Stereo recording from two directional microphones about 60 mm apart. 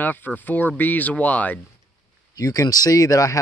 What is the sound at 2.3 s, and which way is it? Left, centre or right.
Speech, left.